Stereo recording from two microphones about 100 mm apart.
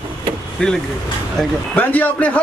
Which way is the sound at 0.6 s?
10° left (ahead or behind).